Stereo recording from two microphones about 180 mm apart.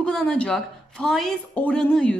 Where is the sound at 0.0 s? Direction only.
5° left (ahead or behind).